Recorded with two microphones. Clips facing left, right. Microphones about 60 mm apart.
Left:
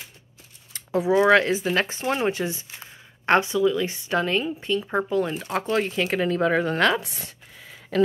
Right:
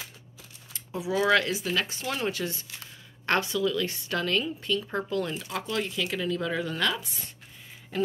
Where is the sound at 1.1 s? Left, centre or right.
Left.